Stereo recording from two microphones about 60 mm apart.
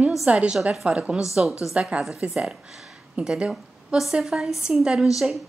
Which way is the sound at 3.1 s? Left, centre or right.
Centre.